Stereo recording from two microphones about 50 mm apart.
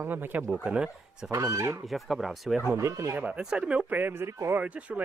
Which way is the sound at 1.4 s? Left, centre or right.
Right.